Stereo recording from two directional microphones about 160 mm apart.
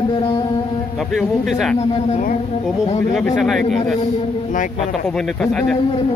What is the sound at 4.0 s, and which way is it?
Speech, 50° left (ahead or behind).